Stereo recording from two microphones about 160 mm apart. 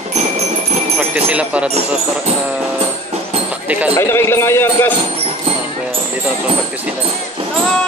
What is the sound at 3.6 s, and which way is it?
Speech, 10° right (ahead or behind).